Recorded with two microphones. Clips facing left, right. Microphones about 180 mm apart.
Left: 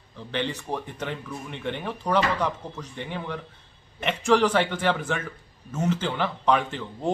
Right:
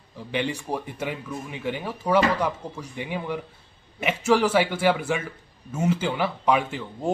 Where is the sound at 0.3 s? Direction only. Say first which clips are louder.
Right 2 dB; 10° right (ahead or behind).